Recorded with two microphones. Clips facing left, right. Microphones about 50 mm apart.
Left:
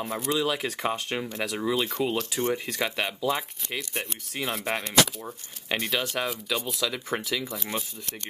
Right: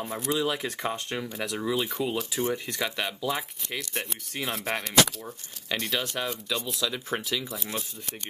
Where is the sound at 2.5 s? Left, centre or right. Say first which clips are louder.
Left 2 dB; centre.